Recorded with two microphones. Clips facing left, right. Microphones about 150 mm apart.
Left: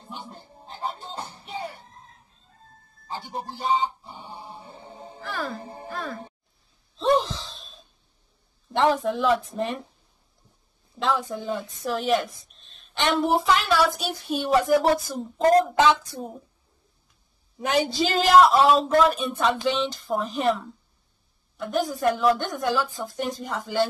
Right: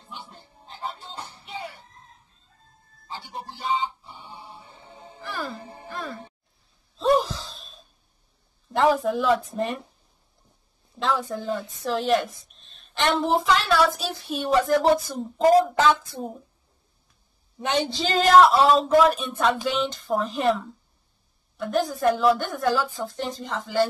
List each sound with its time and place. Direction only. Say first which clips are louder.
0.0 s music: left 3 dB; 40° left (ahead or behind)
3.1 s a sound: left 3 dB; 40° left (ahead or behind)
5.2 s music: left 1 dB; centre (ahead or behind)
5.6 s music: left 3 dB; 35° left (ahead or behind)
5.9 s music: left 1 dB; centre (ahead or behind)
7.0 s gasp: right 1 dB; 5° right (ahead or behind)
8.7 s a woman's voice: right 1 dB; centre (ahead or behind)
11.1 s a woman's voice: right 1 dB; 5° left (ahead or behind)
17.7 s a woman's voice: left 1 dB; 5° left (ahead or behind)
22.9 s speech: even; 10° left (ahead or behind)